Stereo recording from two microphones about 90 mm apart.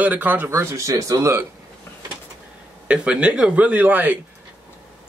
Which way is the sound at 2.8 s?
15° right (ahead or behind).